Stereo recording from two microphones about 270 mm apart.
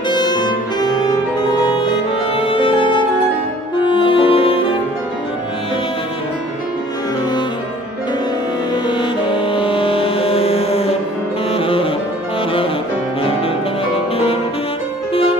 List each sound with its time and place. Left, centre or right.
0.1 s music: centre
2.3 s music: centre
3.8 s french horn: centre
9.3 s music: centre